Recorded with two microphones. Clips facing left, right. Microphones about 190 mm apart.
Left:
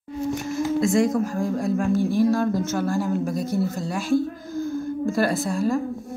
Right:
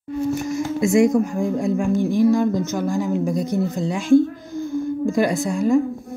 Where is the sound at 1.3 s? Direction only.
20° right (ahead or behind).